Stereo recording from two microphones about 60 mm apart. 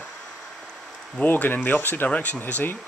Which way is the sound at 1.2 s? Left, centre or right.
Left.